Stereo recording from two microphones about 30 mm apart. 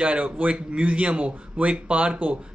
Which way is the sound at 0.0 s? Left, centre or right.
Right.